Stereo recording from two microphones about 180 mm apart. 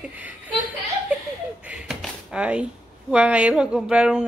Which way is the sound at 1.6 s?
5° right (ahead or behind).